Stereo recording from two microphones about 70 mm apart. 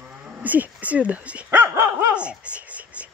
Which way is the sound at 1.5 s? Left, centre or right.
Right.